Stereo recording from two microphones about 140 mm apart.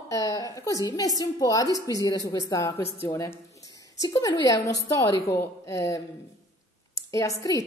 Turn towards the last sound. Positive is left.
turn(degrees=25)  # may be behind; listen again after turning